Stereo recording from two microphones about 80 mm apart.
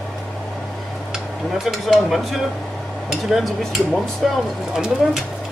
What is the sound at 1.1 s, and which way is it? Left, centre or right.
Speech, centre.